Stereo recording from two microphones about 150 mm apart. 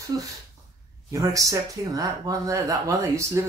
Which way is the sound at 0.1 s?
25° right (ahead or behind).